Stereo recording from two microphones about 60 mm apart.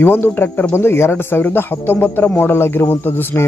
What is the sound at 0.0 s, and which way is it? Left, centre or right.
Speech, left.